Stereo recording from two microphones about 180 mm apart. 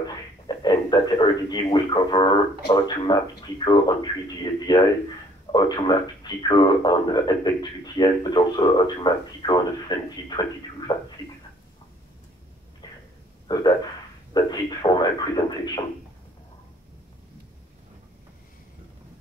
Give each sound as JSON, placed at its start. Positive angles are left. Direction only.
{"t": 0.5, "sound": "a man's voice", "side_deg": 25}
{"t": 12.8, "sound": "a sound", "side_deg": 20}
{"t": 14.3, "sound": "a man's voice", "side_deg": 20}